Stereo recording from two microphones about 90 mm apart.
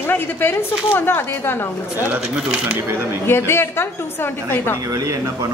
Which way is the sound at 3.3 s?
25° left (ahead or behind).